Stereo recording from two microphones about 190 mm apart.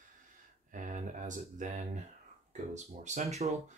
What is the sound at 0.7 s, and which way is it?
Speech, 45° right (ahead or behind).